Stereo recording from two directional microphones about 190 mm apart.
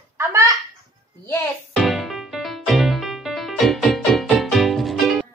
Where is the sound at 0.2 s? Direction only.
15° right (ahead or behind).